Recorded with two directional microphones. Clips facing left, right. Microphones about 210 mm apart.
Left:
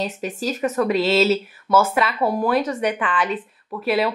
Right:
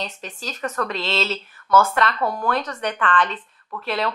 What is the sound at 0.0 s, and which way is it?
Speech, 5° left (ahead or behind).